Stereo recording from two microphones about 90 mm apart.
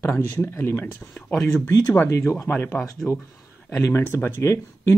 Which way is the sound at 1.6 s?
15° left (ahead or behind).